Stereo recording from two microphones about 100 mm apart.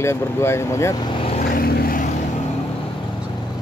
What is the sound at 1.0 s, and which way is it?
Speech, 45° left (ahead or behind).